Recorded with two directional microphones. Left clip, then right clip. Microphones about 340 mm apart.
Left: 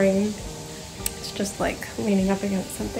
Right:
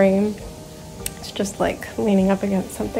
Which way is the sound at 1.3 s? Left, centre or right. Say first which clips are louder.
Right 5 dB; centre.